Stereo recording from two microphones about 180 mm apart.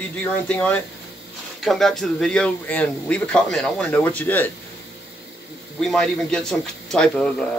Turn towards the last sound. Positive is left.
turn(degrees=5)  # may be behind; listen again after turning